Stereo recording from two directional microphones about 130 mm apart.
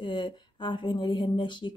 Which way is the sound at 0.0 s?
35° left (ahead or behind).